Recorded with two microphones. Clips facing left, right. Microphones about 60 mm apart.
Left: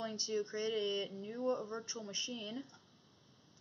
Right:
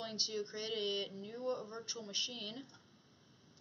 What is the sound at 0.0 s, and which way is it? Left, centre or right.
Speech, left.